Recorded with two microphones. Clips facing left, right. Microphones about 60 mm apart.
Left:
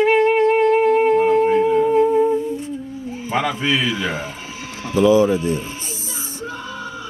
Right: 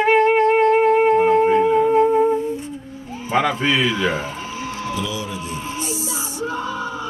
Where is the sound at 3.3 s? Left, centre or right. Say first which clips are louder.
Right 2 dB; centre.